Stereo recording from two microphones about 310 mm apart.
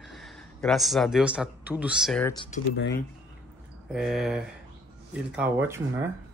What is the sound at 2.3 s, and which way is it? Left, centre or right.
Speech, centre.